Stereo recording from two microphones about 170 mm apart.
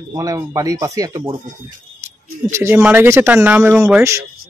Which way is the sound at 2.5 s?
15° right (ahead or behind).